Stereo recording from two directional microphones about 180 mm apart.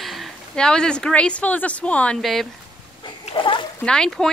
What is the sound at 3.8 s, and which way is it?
Speech, 5° left (ahead or behind).